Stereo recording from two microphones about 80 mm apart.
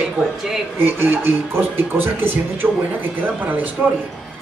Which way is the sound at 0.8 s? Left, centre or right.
Right.